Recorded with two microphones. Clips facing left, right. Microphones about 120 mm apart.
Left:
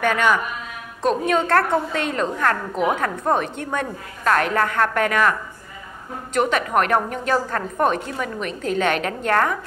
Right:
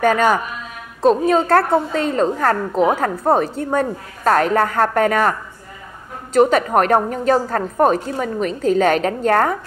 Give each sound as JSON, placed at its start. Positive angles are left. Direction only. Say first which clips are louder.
{"t": 0.0, "sound": "a woman's voice", "louder": "right 4 dB", "side_deg": -40}
{"t": 6.3, "sound": "a woman's voice", "louder": "right 6 dB", "side_deg": -35}